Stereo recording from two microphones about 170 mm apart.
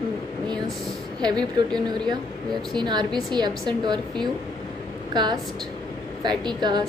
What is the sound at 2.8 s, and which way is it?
A woman's voice, 25° right (ahead or behind).